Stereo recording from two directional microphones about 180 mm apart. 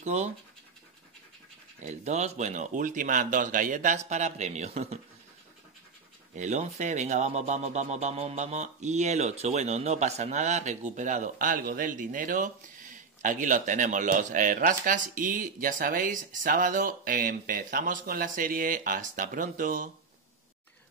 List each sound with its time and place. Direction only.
0.0 s speech: 40° right (ahead or behind)
1.8 s a man's voice: 40° right (ahead or behind)
6.3 s a man's voice: 40° right (ahead or behind)